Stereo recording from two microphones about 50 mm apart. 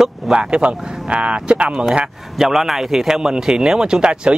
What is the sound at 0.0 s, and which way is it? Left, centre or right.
Speech, centre.